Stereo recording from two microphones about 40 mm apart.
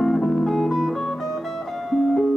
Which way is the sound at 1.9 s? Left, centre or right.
Centre.